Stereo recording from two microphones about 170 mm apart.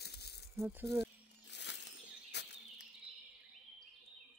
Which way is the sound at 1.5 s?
90° left.